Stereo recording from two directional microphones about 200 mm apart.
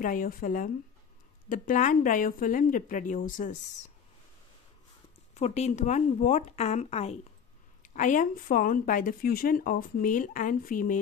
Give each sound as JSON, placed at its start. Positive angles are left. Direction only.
{"t": 0.0, "sound": "speech", "side_deg": 45}
{"t": 5.3, "sound": "speech", "side_deg": 35}